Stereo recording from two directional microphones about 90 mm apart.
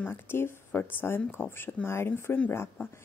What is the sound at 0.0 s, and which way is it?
A woman's voice, 25° left (ahead or behind).